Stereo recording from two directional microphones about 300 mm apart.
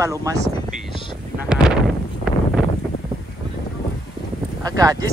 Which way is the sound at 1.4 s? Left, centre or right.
Centre.